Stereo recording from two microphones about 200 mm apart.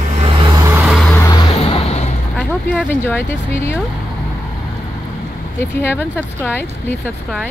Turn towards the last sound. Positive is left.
turn(degrees=10)  # may be behind; listen again after turning